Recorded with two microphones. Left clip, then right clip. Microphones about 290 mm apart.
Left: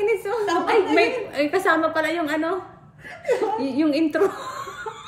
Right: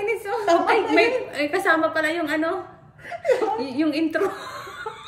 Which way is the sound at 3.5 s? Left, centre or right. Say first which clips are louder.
Left 2 dB; centre.